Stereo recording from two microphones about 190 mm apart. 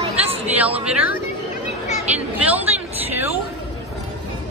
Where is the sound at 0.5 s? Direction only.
10° right (ahead or behind).